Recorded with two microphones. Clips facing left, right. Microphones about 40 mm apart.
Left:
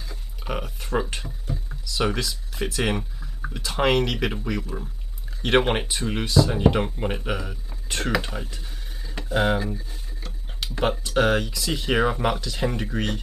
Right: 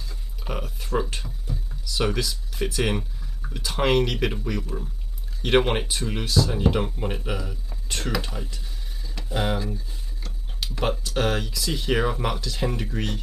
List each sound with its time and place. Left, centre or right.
0.1 s speech: centre
1.9 s speech: centre